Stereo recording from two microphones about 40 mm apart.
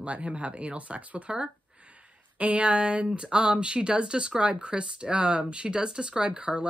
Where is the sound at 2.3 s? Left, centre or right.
Right.